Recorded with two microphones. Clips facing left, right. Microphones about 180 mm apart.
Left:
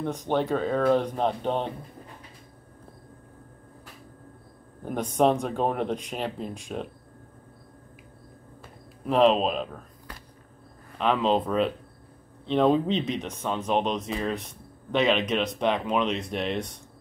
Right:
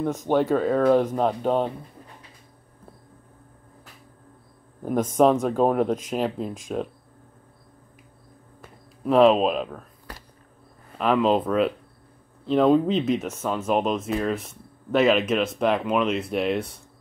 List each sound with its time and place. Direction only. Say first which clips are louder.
0.3 s speech: right 4 dB; 5° right (ahead or behind)
1.4 s speech: right 5 dB; 40° right (ahead or behind)
4.8 s speech: right 4 dB; centre (ahead or behind)
9.2 s speech: right 3 dB; 5° right (ahead or behind)
11.0 s speech: right 3 dB; 5° right (ahead or behind)